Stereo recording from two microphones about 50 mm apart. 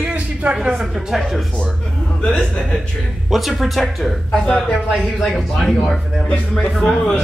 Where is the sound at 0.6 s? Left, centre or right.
Centre.